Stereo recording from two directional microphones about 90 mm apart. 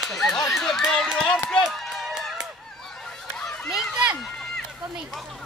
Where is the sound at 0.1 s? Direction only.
5° left (ahead or behind).